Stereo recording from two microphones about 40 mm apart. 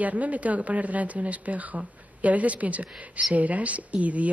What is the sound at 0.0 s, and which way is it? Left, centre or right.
Speech, right.